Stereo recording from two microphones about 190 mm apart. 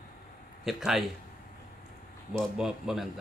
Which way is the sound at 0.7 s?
Centre (ahead or behind).